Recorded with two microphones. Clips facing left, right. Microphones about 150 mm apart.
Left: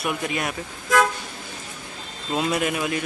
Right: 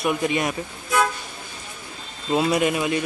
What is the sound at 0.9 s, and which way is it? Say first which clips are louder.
Toot: left 2 dB; 90° left.